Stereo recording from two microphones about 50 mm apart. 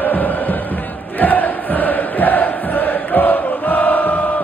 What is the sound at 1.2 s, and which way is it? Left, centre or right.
Chant, left.